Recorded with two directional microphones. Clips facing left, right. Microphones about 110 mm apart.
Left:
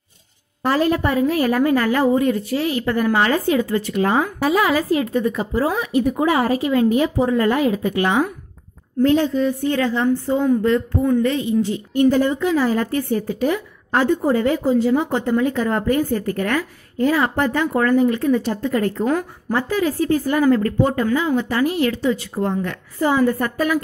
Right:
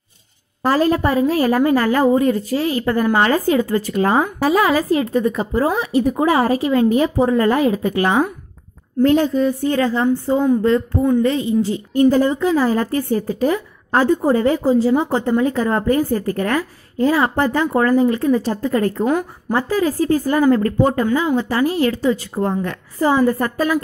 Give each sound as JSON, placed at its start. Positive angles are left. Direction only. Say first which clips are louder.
{"t": 0.7, "sound": "a woman's voice", "louder": "right 2 dB", "side_deg": -35}